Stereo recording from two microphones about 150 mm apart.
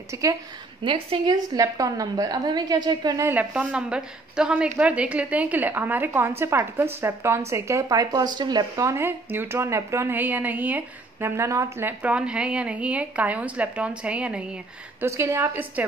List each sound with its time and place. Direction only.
0.1 s a woman's voice: 20° right (ahead or behind)
0.8 s a woman's voice: 35° right (ahead or behind)
1.5 s a woman's voice: 25° right (ahead or behind)
3.3 s speech: 10° right (ahead or behind)